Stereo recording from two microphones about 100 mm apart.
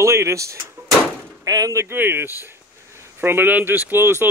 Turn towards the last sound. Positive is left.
turn(degrees=-25)  # may be behind; listen again after turning